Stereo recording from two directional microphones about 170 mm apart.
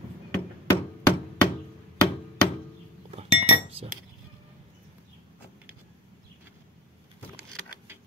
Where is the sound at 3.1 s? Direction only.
35° right (ahead or behind).